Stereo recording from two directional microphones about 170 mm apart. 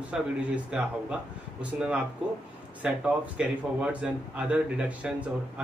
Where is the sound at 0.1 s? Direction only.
5° right (ahead or behind).